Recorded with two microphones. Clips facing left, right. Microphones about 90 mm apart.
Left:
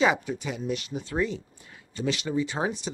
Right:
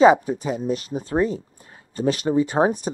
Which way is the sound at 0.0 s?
35° right (ahead or behind).